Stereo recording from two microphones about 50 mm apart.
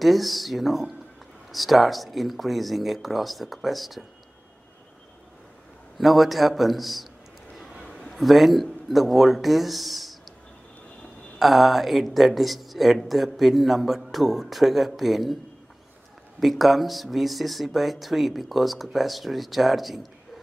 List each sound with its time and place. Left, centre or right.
0.0 s a woman's voice: centre
5.9 s a woman's voice: centre
11.3 s a woman's voice: centre
16.3 s a woman's voice: centre